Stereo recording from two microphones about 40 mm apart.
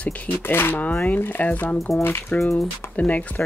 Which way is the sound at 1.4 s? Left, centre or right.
Left.